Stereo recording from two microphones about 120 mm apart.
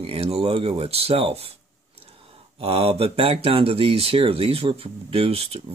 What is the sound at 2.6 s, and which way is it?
Speech, 55° right (ahead or behind).